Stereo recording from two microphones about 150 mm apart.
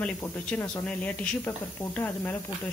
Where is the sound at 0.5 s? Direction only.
15° left (ahead or behind).